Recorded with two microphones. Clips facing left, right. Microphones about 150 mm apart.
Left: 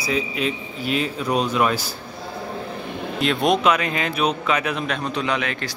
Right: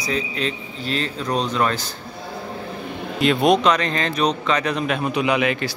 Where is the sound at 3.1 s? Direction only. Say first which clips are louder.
Right 3 dB; centre (ahead or behind).